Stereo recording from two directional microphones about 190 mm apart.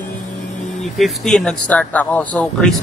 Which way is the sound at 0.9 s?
Centre (ahead or behind).